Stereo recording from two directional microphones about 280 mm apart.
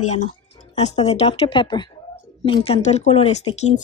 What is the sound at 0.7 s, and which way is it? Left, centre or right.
Speech, left.